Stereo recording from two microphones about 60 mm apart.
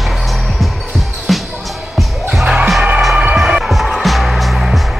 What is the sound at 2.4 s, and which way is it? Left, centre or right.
Music, centre.